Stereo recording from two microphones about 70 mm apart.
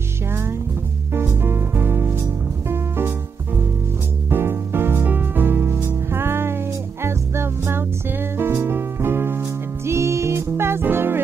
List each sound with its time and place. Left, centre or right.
0.3 s music: right
4.3 s music: right